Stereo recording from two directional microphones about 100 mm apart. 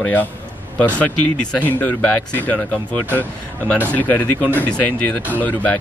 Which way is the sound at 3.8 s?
15° left (ahead or behind).